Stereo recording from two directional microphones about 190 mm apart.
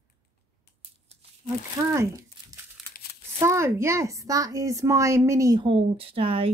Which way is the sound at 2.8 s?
Centre (ahead or behind).